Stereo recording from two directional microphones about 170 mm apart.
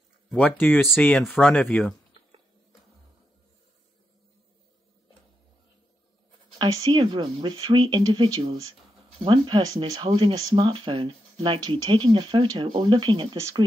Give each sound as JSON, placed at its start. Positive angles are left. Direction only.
{"t": 0.3, "sound": "speech", "side_deg": 5}
{"t": 0.8, "sound": "speech", "side_deg": 0}
{"t": 6.6, "sound": "speech", "side_deg": -25}
{"t": 13.4, "sound": "speech", "side_deg": -15}